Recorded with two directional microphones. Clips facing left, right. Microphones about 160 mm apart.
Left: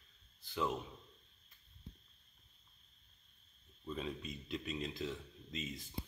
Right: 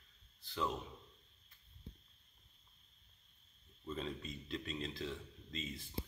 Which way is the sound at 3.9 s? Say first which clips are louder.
Left 1 dB; 5° left (ahead or behind).